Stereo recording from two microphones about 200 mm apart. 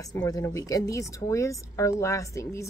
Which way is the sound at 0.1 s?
20° left (ahead or behind).